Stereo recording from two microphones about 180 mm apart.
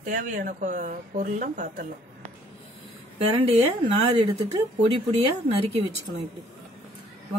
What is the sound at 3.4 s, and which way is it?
Speech, 30° right (ahead or behind).